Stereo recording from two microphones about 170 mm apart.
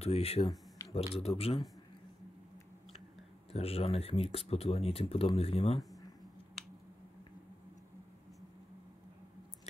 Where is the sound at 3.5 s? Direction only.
35° left (ahead or behind).